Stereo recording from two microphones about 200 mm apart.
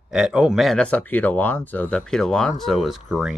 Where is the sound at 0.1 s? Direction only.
5° right (ahead or behind).